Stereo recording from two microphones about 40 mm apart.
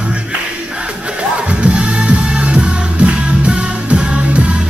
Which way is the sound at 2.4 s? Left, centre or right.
Right.